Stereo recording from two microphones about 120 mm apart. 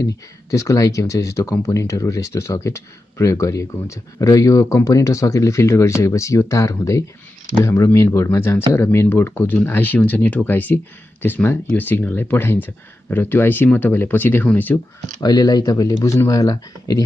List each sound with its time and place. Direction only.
0.0 s speech: 25° left (ahead or behind)
15.1 s speech: 30° left (ahead or behind)